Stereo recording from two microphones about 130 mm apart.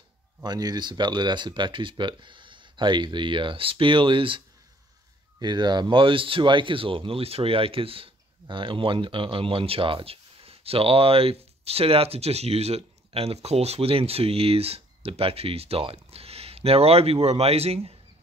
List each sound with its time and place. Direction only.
0.4 s speech: 30° right (ahead or behind)
5.4 s speech: 35° right (ahead or behind); by 17.9 s 50° right (ahead or behind)